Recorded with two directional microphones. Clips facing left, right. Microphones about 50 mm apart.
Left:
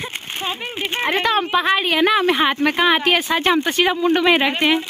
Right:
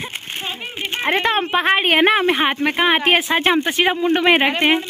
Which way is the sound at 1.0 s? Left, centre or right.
Right.